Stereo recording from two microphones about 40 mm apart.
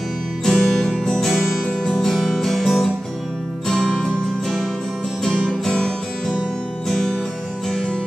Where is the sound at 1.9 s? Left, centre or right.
Centre.